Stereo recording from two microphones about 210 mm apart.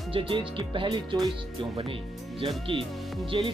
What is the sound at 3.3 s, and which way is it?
Speech, 25° right (ahead or behind).